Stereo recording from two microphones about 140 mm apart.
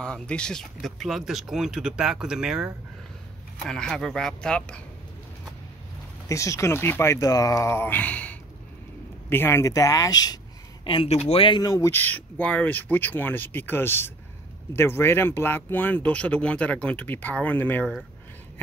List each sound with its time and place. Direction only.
0.0 s speech: 5° left (ahead or behind)
6.2 s speech: 20° left (ahead or behind)
11.1 s speech: 50° left (ahead or behind); by 17.9 s 10° left (ahead or behind)